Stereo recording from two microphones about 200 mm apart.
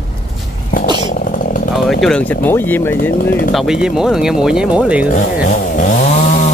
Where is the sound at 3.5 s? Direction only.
Centre (ahead or behind).